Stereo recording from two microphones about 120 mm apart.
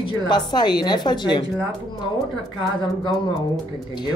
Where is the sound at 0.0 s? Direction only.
40° left (ahead or behind).